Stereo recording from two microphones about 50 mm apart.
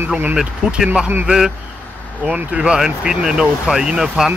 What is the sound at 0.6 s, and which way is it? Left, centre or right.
Speech, centre.